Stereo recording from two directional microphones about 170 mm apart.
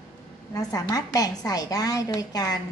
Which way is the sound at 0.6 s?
20° left (ahead or behind).